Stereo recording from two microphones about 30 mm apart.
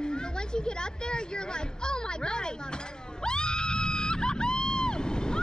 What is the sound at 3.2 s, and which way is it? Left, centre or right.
Screaming, left.